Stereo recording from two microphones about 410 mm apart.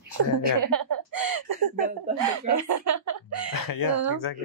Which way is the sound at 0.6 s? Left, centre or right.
Right.